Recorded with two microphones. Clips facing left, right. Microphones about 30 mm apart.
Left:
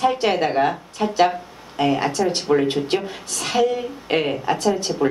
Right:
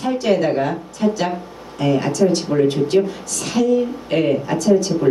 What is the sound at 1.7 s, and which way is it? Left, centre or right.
Speech, left.